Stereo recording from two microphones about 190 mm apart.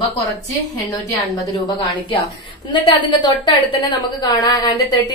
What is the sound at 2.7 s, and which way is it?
A woman's voice, 25° left (ahead or behind).